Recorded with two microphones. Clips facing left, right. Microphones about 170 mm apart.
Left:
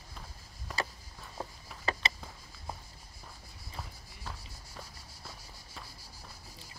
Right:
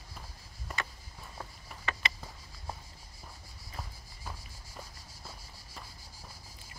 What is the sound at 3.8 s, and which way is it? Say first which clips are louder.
Walk: even; 5° right (ahead or behind).